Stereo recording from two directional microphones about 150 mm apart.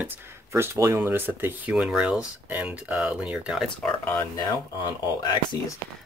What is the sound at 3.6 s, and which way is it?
Speech, 10° left (ahead or behind).